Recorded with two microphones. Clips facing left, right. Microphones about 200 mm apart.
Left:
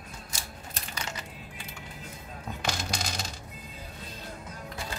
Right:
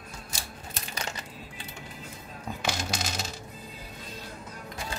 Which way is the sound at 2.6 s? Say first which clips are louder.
Right 1 dB; 5° right (ahead or behind).